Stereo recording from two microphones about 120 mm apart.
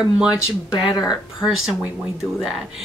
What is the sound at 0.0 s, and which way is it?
Speech, 5° right (ahead or behind).